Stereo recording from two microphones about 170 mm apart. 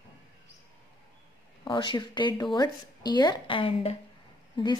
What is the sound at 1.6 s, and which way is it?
A woman's voice, 25° left (ahead or behind).